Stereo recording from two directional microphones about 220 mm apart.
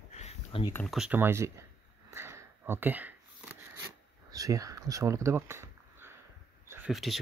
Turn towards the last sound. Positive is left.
turn(degrees=0)  # may be behind; listen again after turning